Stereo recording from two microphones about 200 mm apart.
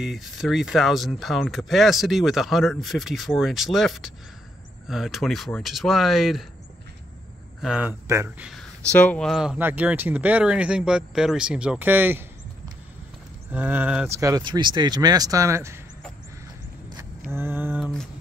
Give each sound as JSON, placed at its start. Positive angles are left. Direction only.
{"t": 0.0, "sound": "speech", "side_deg": 0}
{"t": 7.6, "sound": "speech", "side_deg": -5}
{"t": 8.9, "sound": "speech", "side_deg": 5}
{"t": 13.5, "sound": "speech", "side_deg": -10}
{"t": 17.3, "sound": "speech", "side_deg": -10}
{"t": 17.7, "sound": "speech", "side_deg": 5}